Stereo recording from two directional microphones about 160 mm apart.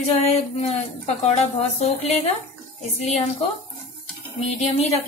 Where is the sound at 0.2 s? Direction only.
40° left (ahead or behind).